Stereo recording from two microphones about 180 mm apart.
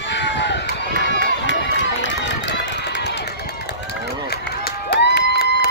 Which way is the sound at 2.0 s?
80° left.